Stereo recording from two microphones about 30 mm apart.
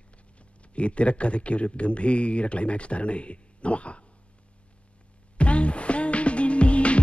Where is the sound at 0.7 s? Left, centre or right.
Left.